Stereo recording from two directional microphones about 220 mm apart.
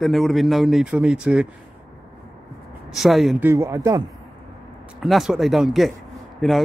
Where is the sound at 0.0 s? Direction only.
Centre (ahead or behind).